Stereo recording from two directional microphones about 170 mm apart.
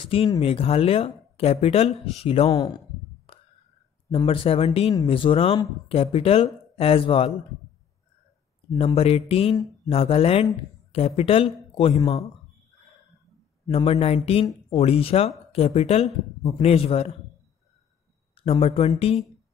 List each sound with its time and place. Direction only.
0.4 s a man's voice: 35° left (ahead or behind)
4.1 s speech: 35° left (ahead or behind)
8.7 s speech: 35° left (ahead or behind)
13.7 s speech: 35° left (ahead or behind)
18.3 s speech: 35° left (ahead or behind)